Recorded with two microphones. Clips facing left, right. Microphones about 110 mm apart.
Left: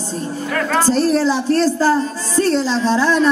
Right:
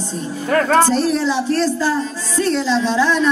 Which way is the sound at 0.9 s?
35° left (ahead or behind).